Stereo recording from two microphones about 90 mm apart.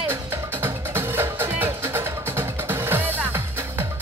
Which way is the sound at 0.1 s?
25° right (ahead or behind).